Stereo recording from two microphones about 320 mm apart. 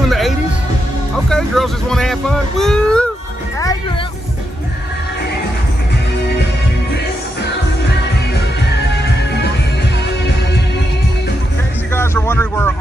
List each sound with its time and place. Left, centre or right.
0.0 s music: centre
1.1 s a sound: centre
8.9 s music: left
11.9 s music: centre